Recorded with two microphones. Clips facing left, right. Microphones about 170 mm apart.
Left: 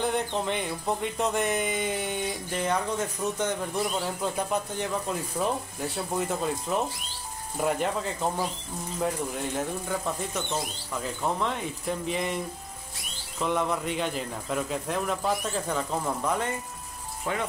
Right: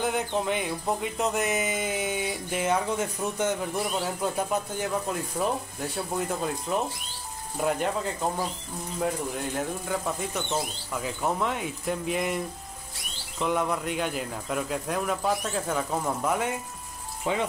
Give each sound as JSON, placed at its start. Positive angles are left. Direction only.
{"t": 0.0, "sound": "music", "side_deg": -5}
{"t": 13.4, "sound": "music", "side_deg": -5}
{"t": 17.2, "sound": "speech", "side_deg": -20}